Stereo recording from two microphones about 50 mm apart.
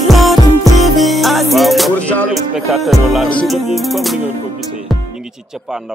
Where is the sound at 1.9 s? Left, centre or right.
Left.